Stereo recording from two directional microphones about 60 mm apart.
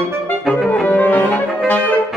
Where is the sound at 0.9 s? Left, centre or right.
Left.